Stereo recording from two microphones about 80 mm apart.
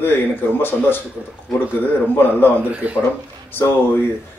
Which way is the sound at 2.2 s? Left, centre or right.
Left.